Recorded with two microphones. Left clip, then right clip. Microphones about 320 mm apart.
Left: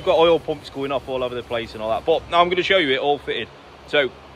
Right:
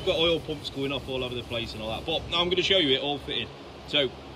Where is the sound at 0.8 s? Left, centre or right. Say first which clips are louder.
Left 7 dB; centre.